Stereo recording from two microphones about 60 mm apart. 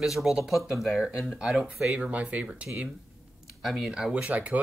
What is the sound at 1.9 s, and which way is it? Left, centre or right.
Speech, right.